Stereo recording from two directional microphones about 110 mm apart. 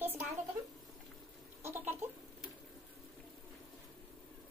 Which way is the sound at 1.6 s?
20° right (ahead or behind).